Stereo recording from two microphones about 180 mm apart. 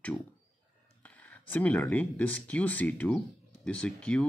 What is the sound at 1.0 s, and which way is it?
Speech, 10° left (ahead or behind).